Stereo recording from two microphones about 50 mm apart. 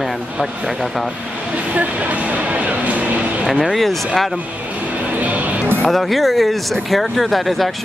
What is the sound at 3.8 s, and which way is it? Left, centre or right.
Speech, centre.